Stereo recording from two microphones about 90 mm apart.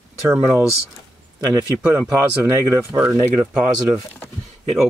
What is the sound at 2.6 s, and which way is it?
Speech, 30° right (ahead or behind).